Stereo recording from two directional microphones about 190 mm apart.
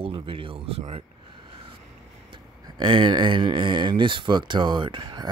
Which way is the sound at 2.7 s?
25° right (ahead or behind).